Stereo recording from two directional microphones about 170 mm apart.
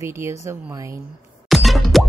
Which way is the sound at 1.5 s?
Centre (ahead or behind).